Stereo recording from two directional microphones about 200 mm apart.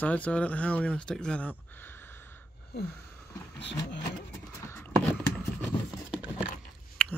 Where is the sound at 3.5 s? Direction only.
60° left (ahead or behind).